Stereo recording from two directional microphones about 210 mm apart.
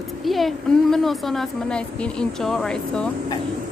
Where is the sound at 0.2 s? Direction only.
Centre (ahead or behind).